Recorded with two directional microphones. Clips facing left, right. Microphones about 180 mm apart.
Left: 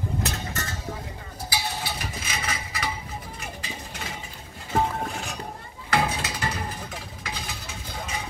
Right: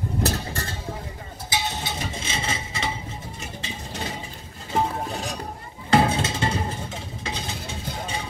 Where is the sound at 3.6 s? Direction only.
30° right (ahead or behind).